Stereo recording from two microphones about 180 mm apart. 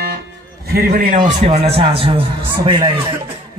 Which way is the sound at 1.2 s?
35° right (ahead or behind).